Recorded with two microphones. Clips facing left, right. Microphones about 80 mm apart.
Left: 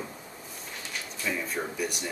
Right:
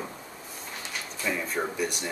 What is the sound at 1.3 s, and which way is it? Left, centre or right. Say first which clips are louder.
Speech: right 2 dB; centre.